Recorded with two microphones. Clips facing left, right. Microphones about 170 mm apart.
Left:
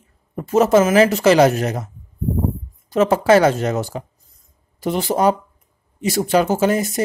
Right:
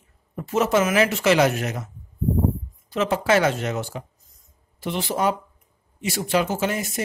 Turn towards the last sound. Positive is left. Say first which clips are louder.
# left 7 dB
turn(degrees=40)  # may be behind; listen again after turning